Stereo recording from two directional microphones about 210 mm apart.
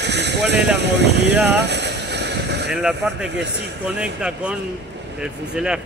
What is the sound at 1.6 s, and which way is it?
Boat, 55° right (ahead or behind).